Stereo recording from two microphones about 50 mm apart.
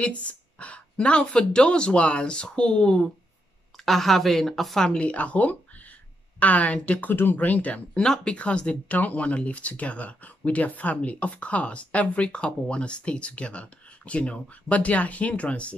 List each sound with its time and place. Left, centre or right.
0.0 s speech: left
3.7 s a woman's voice: centre
4.8 s speech: left
7.1 s speech: left
8.0 s speech: centre